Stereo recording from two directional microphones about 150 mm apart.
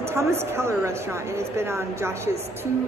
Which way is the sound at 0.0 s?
15° right (ahead or behind).